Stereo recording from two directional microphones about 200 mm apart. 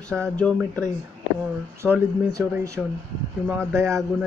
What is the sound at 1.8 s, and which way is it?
Speech, 10° right (ahead or behind).